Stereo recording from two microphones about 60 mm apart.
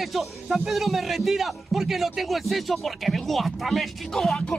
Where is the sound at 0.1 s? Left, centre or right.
Centre.